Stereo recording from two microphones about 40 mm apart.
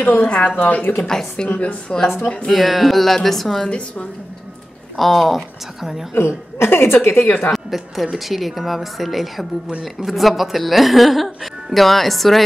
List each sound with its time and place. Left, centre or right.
0.0 s speech: left
0.3 s speech: left
0.6 s speech: left
0.9 s a woman's voice: centre
1.9 s speech: left
2.5 s speech: centre
4.9 s speech: centre
6.1 s a woman's voice: left
7.5 s speech: centre